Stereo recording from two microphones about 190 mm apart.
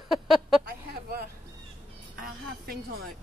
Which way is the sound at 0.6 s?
50° right (ahead or behind).